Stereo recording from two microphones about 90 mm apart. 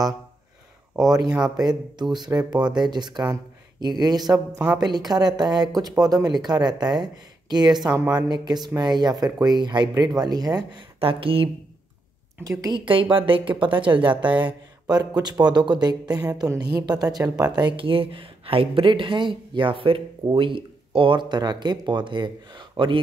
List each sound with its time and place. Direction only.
1.6 s speech: 50° right (ahead or behind)
11.0 s speech: 90° right
12.7 s a woman's voice: 70° right (ahead or behind)